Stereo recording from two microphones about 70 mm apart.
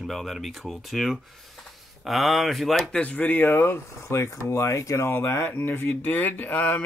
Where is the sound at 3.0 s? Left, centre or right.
Left.